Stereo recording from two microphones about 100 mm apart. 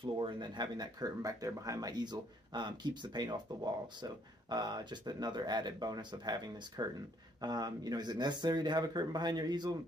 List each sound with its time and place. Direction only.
0.0 s speech: 50° right (ahead or behind)